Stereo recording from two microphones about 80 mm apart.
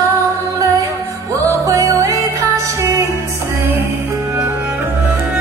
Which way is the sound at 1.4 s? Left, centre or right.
Right.